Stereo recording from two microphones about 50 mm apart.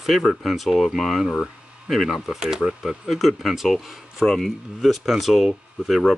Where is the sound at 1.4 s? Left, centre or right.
Centre.